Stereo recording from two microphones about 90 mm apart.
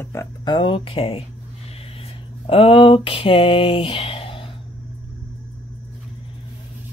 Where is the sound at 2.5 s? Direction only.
90° left.